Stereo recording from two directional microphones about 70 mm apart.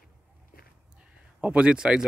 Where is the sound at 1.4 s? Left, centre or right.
Centre.